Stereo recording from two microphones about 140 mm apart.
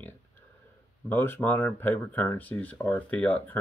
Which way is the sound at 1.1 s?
15° left (ahead or behind).